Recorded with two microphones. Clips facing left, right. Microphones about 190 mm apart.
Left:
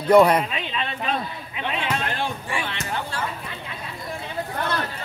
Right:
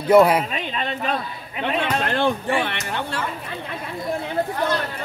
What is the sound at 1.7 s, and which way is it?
Speech, 60° right (ahead or behind).